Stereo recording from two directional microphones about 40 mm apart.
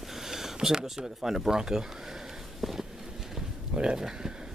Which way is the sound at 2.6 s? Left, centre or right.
Centre.